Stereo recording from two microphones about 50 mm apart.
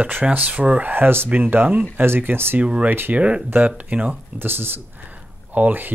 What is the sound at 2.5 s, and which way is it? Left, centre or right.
Speech, right.